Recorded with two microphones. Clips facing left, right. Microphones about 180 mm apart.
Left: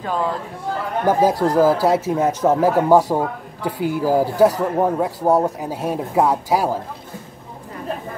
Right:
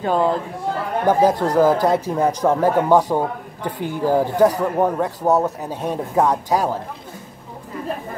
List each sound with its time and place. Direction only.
0.0 s speech: 30° right (ahead or behind)
1.0 s speech: 10° left (ahead or behind)